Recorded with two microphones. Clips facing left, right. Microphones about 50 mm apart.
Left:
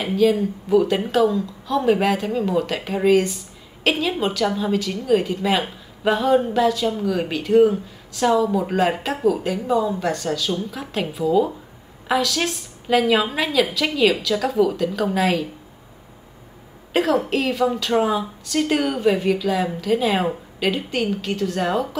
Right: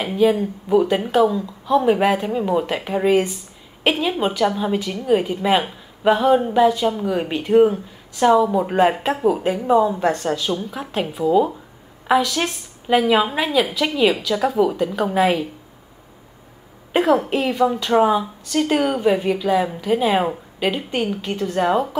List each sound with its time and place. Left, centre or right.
0.1 s speech: centre
16.9 s speech: centre